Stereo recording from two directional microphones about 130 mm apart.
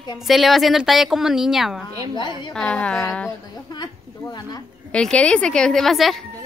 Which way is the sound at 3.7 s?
35° left (ahead or behind).